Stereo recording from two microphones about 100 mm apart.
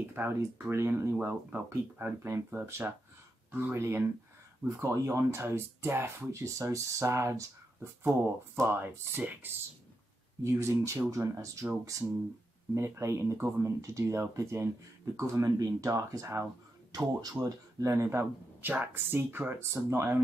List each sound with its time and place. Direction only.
0.0 s speech: 20° right (ahead or behind)
12.7 s speech: 30° right (ahead or behind)